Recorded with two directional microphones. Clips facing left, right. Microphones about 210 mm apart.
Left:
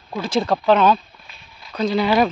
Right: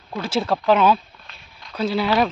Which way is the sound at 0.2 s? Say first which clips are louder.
Left 2 dB; 5° right (ahead or behind).